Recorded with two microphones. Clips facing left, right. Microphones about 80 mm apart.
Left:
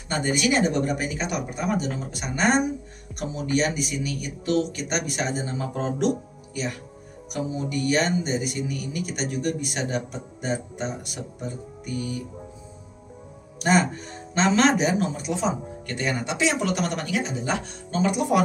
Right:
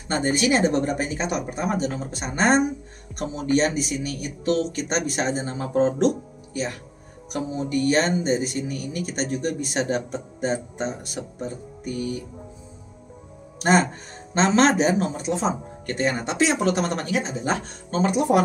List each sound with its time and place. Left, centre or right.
0.1 s speech: right
3.1 s speech: centre
3.5 s speech: right
13.6 s speech: right